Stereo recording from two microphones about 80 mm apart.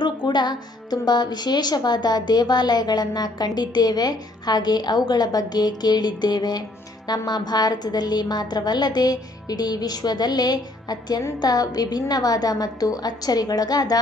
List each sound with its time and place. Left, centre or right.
0.0 s a woman's voice: left